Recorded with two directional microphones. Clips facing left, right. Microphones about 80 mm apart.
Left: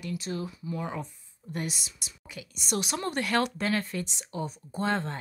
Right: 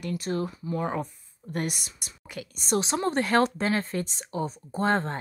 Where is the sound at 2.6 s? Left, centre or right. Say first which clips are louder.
Right 5 dB; right.